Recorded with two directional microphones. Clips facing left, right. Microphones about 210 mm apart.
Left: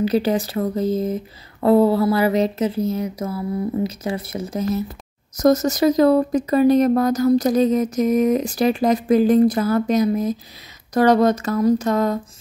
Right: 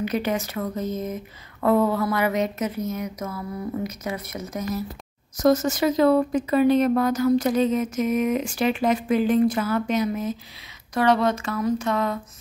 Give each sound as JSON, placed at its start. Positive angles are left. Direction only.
{"t": 0.0, "sound": "speech", "side_deg": 35}
{"t": 5.4, "sound": "speech", "side_deg": 40}